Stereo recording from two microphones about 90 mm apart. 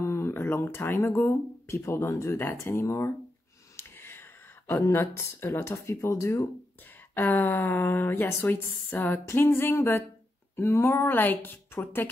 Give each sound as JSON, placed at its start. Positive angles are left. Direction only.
{"t": 0.0, "sound": "speech", "side_deg": 30}
{"t": 7.2, "sound": "speech", "side_deg": 20}